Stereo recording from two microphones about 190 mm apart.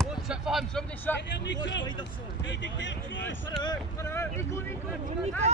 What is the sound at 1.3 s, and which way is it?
Speech, 65° left (ahead or behind).